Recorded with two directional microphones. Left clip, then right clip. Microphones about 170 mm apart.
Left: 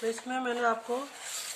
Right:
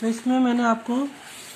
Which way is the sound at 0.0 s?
60° right (ahead or behind).